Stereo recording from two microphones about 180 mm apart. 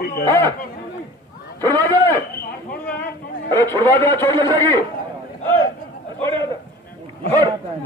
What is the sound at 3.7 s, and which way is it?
Speech, 15° left (ahead or behind).